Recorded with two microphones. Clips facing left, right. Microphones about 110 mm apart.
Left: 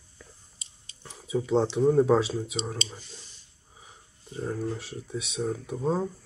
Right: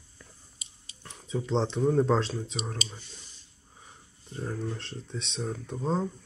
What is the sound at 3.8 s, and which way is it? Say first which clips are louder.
Speech: left 1 dB; 5° left (ahead or behind).